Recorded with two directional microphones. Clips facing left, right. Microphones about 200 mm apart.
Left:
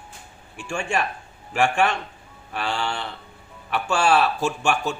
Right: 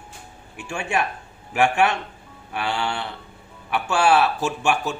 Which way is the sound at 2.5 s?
5° right (ahead or behind).